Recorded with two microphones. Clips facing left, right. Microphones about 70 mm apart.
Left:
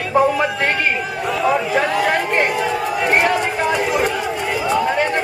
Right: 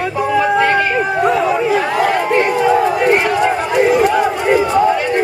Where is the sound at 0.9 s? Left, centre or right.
Right.